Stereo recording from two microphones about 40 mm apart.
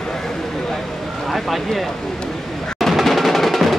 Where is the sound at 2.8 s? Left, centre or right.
Centre.